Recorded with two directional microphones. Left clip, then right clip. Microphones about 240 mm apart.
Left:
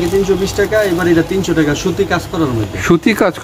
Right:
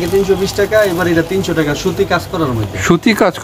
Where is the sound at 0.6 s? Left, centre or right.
Centre.